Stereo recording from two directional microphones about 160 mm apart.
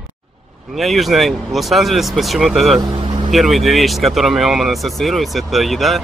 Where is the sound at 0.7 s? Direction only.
Centre (ahead or behind).